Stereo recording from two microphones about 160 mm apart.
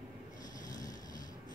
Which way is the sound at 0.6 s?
25° left (ahead or behind).